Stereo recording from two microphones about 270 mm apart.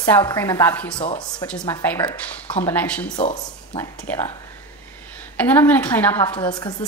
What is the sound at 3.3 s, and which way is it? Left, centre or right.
Speech, centre.